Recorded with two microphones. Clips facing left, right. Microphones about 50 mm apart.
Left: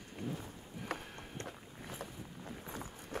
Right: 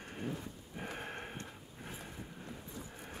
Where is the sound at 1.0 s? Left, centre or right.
Right.